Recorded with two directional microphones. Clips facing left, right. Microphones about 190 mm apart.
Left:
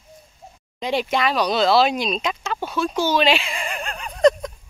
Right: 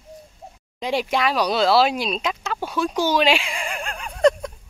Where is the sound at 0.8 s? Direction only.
10° right (ahead or behind).